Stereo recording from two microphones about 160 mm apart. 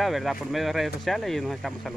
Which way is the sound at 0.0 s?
Centre (ahead or behind).